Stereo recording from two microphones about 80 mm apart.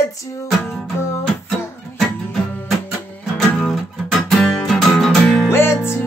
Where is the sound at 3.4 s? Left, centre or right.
Centre.